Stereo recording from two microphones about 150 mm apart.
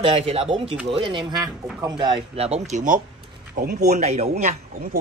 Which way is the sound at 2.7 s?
60° right (ahead or behind).